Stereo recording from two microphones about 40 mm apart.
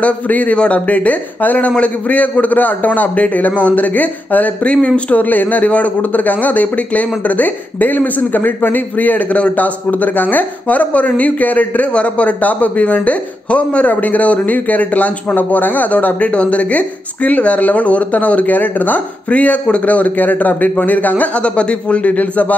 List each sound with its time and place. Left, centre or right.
0.0 s speech: left
4.6 s speech: left
5.1 s speech: left
21.4 s speech: left